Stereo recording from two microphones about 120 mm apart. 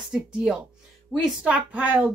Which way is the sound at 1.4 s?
10° right (ahead or behind).